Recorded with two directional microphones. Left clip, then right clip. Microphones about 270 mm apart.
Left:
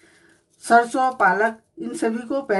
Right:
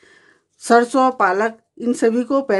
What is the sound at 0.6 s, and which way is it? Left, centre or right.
Speech, right.